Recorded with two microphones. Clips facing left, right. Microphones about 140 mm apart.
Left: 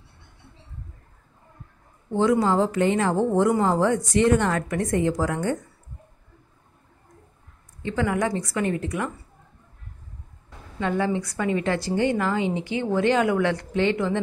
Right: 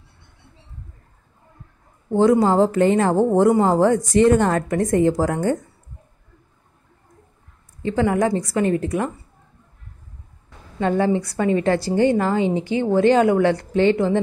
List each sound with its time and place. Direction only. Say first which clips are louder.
2.1 s a woman's voice: right 5 dB; 40° right (ahead or behind)
7.8 s a woman's voice: right 5 dB; 35° right (ahead or behind)
10.8 s a woman's voice: right 5 dB; 35° right (ahead or behind)